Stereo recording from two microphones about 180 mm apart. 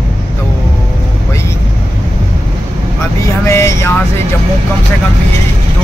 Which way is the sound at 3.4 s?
15° left (ahead or behind).